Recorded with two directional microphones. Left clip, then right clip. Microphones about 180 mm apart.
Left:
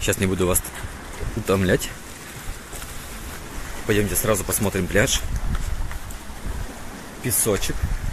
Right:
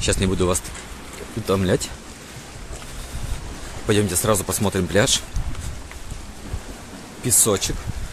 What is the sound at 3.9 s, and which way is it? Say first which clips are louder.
Speech: right 2 dB; 20° right (ahead or behind).